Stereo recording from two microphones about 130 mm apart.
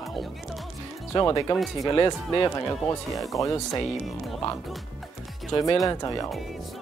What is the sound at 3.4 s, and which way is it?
Speech, 25° left (ahead or behind).